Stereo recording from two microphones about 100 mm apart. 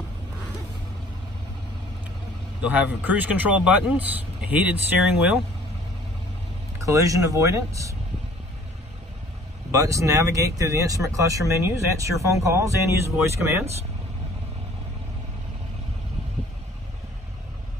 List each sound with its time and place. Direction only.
2.6 s speech: 15° right (ahead or behind)
6.8 s speech: 35° right (ahead or behind)
9.7 s speech: 35° right (ahead or behind)